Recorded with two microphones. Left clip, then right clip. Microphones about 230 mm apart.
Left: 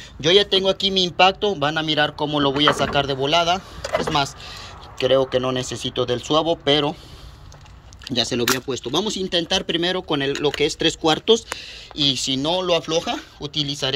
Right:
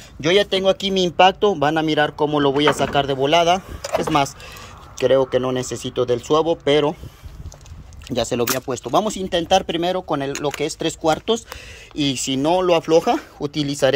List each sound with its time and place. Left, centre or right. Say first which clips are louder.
0.2 s speech: even; centre
8.1 s speech: even; centre
12.0 s speech: left 1 dB; centre